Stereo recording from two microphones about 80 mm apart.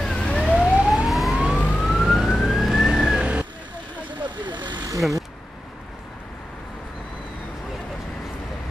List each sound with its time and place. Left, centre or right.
0.0 s emergency vehicle: centre
0.6 s emergency vehicle: centre
4.1 s vehicle: right